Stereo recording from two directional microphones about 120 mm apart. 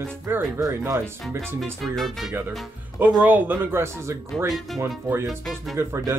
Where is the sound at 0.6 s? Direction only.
30° right (ahead or behind).